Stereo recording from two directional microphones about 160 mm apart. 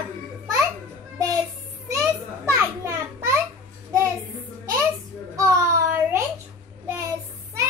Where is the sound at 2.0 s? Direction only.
15° right (ahead or behind).